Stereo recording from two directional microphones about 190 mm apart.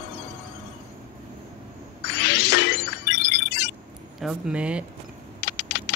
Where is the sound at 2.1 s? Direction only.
65° left (ahead or behind).